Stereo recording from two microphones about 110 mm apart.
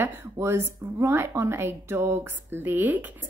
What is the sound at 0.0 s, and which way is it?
A woman's voice, 20° right (ahead or behind).